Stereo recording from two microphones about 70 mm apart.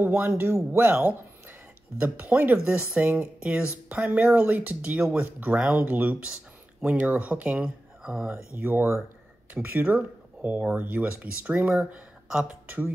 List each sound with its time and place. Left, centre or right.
0.2 s speech: right
7.6 s speech: centre
8.5 s speech: right
12.6 s speech: right